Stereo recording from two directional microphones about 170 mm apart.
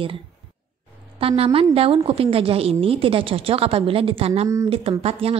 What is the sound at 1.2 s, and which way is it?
A woman's voice, 35° right (ahead or behind).